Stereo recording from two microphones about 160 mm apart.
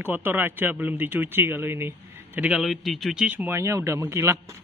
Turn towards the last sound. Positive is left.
turn(degrees=-15)  # may be behind; listen again after turning